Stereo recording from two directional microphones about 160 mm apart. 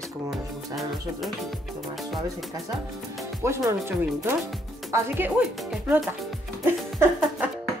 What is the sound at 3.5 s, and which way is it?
Speech, 15° right (ahead or behind).